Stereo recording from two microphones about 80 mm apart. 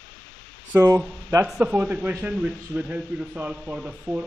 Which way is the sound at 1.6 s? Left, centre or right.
Centre.